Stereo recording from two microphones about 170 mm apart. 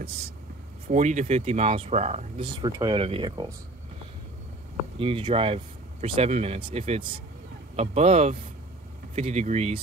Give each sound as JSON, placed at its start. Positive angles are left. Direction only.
{"t": 0.8, "sound": "speech", "side_deg": -45}
{"t": 4.9, "sound": "speech", "side_deg": -35}